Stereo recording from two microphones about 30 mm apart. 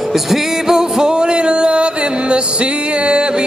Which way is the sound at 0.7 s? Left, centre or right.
Right.